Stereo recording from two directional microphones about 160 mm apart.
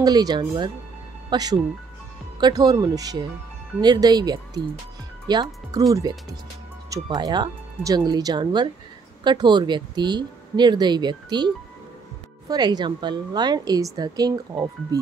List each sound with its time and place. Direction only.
0.0 s speech: 25° right (ahead or behind)
6.9 s speech: 25° right (ahead or behind)